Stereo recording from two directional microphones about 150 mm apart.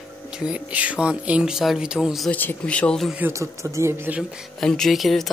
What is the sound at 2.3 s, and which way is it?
Speech, 10° left (ahead or behind).